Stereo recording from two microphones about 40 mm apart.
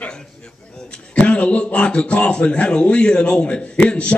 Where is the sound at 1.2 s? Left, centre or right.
Left.